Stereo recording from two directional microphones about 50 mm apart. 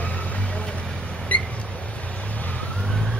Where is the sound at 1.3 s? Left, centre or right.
Left.